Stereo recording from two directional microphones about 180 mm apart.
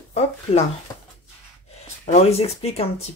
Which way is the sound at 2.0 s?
35° left (ahead or behind).